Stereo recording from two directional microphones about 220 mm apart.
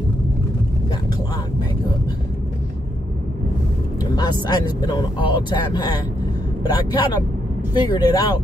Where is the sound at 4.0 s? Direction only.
20° left (ahead or behind).